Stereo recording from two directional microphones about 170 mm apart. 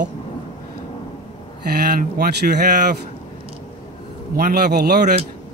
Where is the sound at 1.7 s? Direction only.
65° right (ahead or behind).